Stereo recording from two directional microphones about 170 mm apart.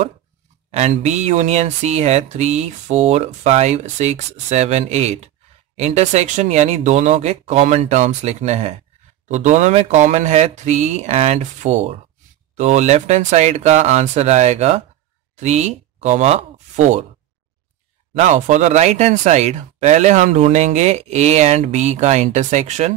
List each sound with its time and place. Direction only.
0.7 s speech: 40° right (ahead or behind)
18.1 s speech: 45° right (ahead or behind)